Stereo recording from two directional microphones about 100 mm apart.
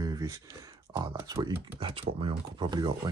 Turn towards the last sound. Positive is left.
turn(degrees=-45)  # may be behind; listen again after turning